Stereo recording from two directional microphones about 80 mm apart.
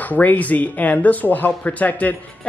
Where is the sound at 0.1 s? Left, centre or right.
Left.